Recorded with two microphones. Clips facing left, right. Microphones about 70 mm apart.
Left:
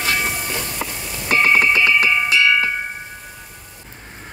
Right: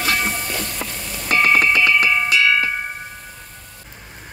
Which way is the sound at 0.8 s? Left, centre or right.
Centre.